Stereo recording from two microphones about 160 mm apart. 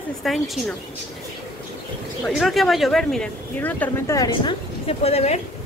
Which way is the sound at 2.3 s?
Centre (ahead or behind).